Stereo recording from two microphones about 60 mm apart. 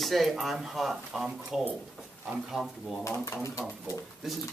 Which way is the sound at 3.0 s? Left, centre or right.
Left.